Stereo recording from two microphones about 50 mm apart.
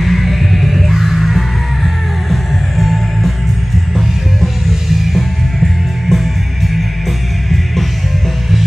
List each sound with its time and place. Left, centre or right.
0.0 s music: centre